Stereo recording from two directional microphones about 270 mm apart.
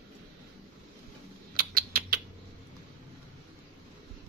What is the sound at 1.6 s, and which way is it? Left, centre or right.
Rodents, right.